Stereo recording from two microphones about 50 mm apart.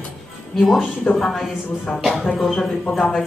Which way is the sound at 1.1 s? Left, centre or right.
Left.